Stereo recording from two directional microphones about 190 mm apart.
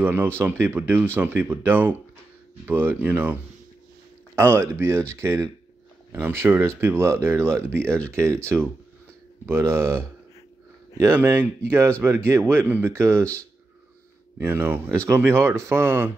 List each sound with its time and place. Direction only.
0.0 s speech: 10° right (ahead or behind)
4.4 s speech: 10° right (ahead or behind)
9.5 s speech: 15° right (ahead or behind)
13.2 s speech: 5° left (ahead or behind)
14.4 s speech: 10° right (ahead or behind)